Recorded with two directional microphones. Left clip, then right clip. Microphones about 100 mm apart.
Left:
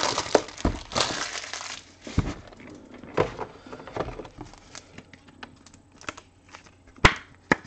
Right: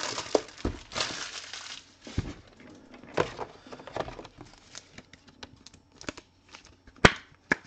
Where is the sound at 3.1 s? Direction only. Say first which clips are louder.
Left 4 dB; 50° right (ahead or behind).